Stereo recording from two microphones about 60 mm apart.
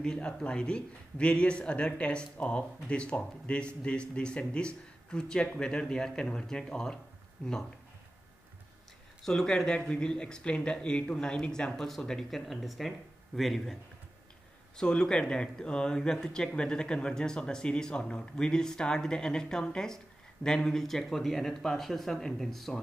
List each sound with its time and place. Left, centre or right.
0.0 s a man's voice: centre
7.4 s speech: left
9.2 s a man's voice: centre
14.8 s a man's voice: centre